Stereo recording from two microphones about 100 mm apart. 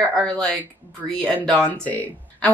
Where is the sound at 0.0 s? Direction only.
10° left (ahead or behind).